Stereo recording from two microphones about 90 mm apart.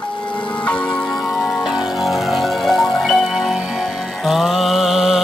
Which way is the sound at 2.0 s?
Centre (ahead or behind).